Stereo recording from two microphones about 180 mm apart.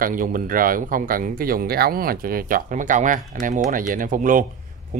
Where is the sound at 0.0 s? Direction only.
50° right (ahead or behind).